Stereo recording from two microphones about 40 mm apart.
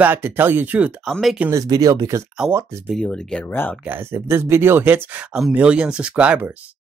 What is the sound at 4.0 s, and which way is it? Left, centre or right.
Speech, right.